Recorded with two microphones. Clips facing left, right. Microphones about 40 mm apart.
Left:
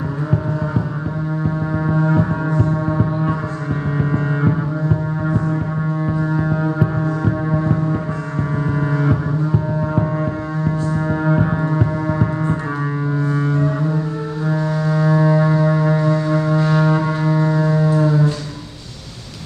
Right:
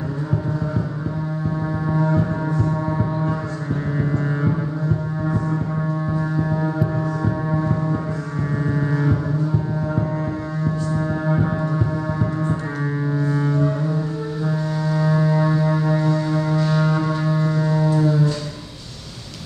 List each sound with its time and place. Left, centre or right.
1.9 s foghorn: left
2.6 s gong: centre
4.0 s music: left
6.3 s music: left
7.0 s music: centre
8.7 s foghorn: left
11.1 s music: left
13.3 s music: centre